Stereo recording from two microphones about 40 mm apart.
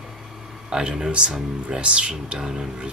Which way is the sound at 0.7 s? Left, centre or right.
Right.